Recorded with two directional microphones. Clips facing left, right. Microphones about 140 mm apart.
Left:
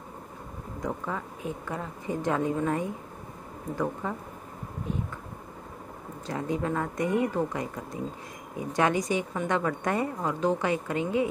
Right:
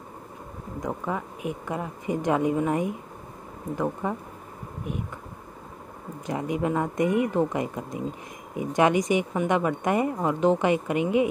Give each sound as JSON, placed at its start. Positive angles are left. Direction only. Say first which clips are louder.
{"t": 0.8, "sound": "speech", "louder": "right 2 dB", "side_deg": -15}
{"t": 6.2, "sound": "a woman's voice", "louder": "right 3 dB", "side_deg": -15}